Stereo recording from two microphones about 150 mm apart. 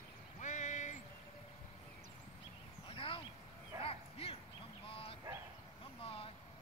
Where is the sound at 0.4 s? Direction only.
55° left (ahead or behind).